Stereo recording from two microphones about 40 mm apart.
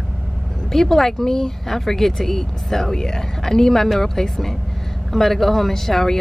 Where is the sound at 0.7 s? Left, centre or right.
Centre.